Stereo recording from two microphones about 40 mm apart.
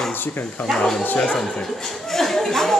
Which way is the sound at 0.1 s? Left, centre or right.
Left.